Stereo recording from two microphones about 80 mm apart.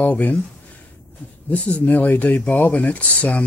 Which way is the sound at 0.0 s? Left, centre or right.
Left.